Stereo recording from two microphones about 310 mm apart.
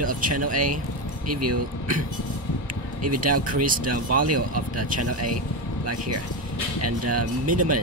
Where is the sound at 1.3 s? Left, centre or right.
Right.